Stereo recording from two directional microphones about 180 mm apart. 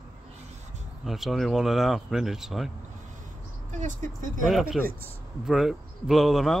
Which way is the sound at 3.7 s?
45° right (ahead or behind).